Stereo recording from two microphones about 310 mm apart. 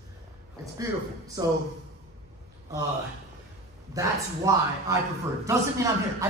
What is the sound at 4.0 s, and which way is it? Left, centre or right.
A man's voice, centre.